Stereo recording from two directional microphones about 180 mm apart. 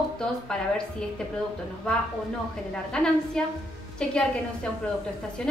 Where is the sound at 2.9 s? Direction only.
5° left (ahead or behind).